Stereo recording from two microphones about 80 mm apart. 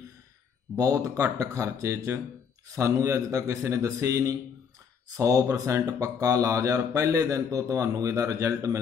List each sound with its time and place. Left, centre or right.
0.7 s a man's voice: right